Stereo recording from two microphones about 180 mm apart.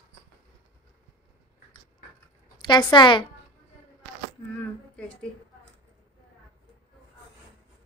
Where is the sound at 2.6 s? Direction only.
25° left (ahead or behind).